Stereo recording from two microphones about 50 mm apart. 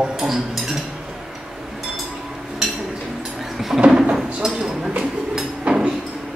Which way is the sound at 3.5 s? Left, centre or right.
Centre.